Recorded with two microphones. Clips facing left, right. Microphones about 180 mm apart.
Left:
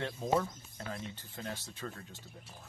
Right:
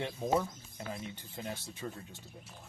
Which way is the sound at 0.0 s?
10° right (ahead or behind).